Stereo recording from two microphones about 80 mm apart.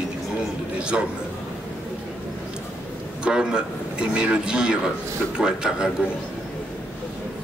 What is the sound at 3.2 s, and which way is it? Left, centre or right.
A man's voice, centre.